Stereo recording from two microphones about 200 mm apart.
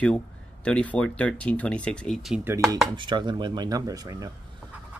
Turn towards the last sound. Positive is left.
turn(degrees=-20)  # may be behind; listen again after turning